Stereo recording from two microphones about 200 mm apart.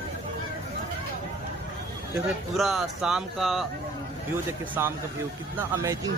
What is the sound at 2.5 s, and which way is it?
Speech, centre (ahead or behind).